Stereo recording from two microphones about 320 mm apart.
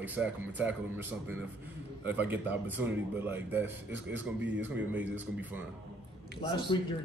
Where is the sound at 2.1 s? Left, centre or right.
Centre.